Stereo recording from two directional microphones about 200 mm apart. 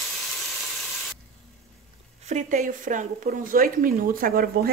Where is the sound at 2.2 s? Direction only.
35° right (ahead or behind).